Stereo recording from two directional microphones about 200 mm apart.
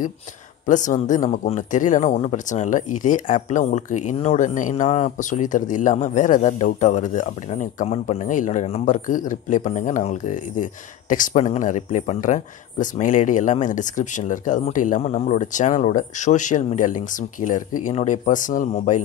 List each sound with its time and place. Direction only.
0.7 s speech: 40° left (ahead or behind)